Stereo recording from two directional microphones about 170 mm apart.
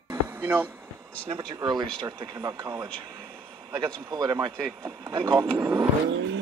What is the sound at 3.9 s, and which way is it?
Speech, 25° right (ahead or behind).